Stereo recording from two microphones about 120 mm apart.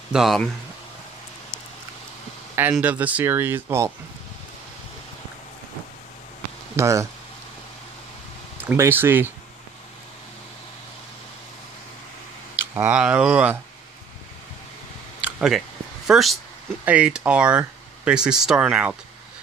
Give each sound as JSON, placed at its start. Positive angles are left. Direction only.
{"t": 0.1, "sound": "speech", "side_deg": -5}
{"t": 2.8, "sound": "speech", "side_deg": -15}
{"t": 6.8, "sound": "speech", "side_deg": -25}
{"t": 8.5, "sound": "speech", "side_deg": -20}
{"t": 12.5, "sound": "speech", "side_deg": -15}
{"t": 15.2, "sound": "a sound", "side_deg": -5}
{"t": 16.1, "sound": "speech", "side_deg": 0}